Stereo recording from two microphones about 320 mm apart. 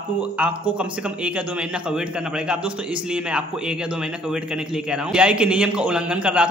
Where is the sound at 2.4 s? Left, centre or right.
Centre.